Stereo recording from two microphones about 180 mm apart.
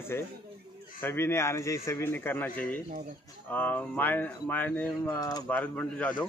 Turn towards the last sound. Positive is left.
turn(degrees=5)  # may be behind; listen again after turning